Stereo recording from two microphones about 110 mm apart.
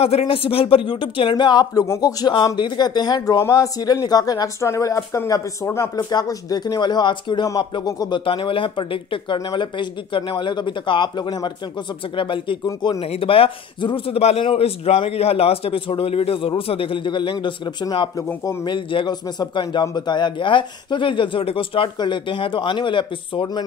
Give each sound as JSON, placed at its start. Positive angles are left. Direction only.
{"t": 0.0, "sound": "speech", "side_deg": 65}
{"t": 6.0, "sound": "speech", "side_deg": 35}
{"t": 8.3, "sound": "speech", "side_deg": 50}
{"t": 13.0, "sound": "a man's voice", "side_deg": 60}
{"t": 18.1, "sound": "speech", "side_deg": 30}
{"t": 18.7, "sound": "speech", "side_deg": 45}